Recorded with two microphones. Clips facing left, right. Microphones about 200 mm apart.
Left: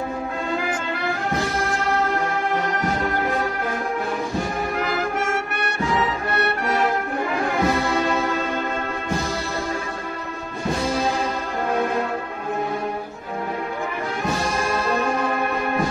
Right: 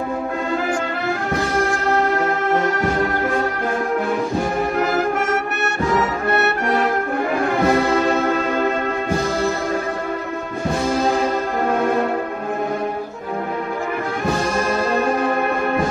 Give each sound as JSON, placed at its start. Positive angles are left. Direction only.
{"t": 2.0, "sound": "music", "side_deg": -50}
{"t": 7.6, "sound": "brass instrument", "side_deg": -50}
{"t": 10.9, "sound": "music", "side_deg": -50}